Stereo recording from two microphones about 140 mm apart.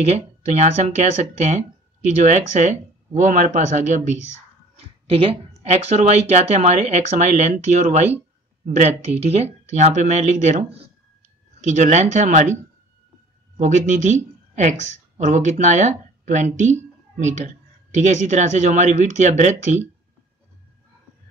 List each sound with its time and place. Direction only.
0.0 s speech: 50° right (ahead or behind)
2.2 s speech: 55° right (ahead or behind)
4.7 s a sound: 45° right (ahead or behind)
5.6 s speech: 50° right (ahead or behind)
13.6 s speech: 60° right (ahead or behind)